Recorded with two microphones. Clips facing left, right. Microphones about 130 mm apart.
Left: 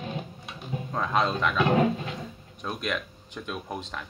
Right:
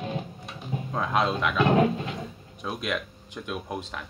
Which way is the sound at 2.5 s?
5° right (ahead or behind).